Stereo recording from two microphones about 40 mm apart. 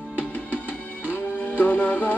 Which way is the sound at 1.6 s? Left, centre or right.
Left.